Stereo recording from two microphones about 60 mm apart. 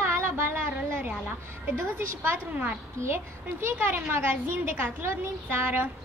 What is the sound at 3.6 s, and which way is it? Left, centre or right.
A woman's voice, right.